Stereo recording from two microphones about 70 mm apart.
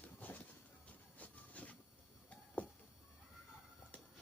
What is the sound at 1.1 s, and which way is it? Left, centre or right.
Train, left.